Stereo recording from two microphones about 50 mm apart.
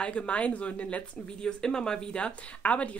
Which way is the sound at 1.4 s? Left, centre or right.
Centre.